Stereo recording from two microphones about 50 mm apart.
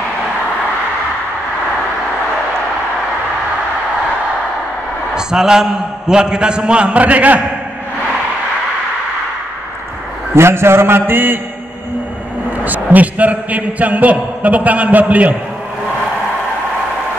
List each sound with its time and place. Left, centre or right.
5.1 s a man's voice: centre; by 7.4 s right
10.3 s a man's voice: right
12.4 s a man's voice: right